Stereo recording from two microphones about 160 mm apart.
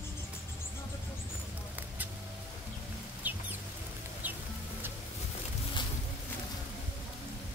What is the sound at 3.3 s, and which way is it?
Chicken, 10° right (ahead or behind).